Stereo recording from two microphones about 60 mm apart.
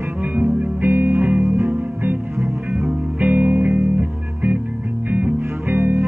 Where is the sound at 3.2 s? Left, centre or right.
Right.